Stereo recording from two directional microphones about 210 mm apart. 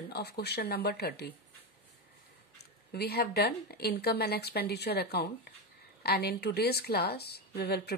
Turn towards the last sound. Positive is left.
turn(degrees=50)  # may be behind; listen again after turning